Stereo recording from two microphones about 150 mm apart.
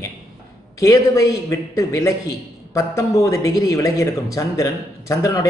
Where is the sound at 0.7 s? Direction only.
20° left (ahead or behind).